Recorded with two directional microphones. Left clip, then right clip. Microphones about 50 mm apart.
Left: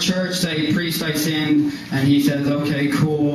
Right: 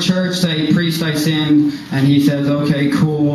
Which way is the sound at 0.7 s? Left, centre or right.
Left.